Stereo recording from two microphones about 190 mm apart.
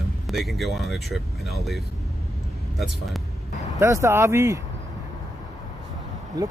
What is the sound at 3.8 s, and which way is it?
Speech, 15° right (ahead or behind).